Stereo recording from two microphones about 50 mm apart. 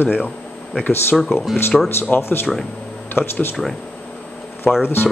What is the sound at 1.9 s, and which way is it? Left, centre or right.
Speech, left.